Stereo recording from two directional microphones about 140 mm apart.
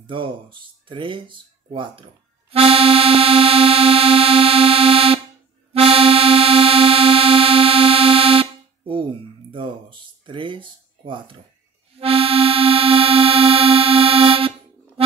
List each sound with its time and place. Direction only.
0.0 s speech: 35° right (ahead or behind)
2.5 s music: 40° right (ahead or behind)
9.5 s speech: 35° right (ahead or behind)
12.0 s music: 45° right (ahead or behind)